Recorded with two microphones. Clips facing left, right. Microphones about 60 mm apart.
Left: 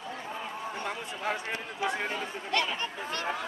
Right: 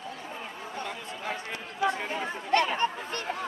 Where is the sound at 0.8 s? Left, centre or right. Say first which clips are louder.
Left 2 dB; left.